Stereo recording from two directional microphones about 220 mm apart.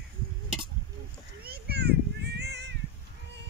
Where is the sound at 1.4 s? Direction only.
45° right (ahead or behind).